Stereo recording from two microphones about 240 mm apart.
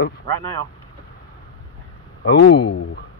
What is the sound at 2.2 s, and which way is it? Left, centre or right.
Speech, left.